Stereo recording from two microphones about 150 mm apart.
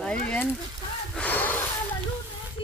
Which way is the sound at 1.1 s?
10° left (ahead or behind).